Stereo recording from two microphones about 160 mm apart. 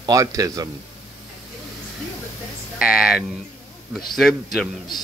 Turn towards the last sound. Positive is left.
turn(degrees=0)  # may be behind; listen again after turning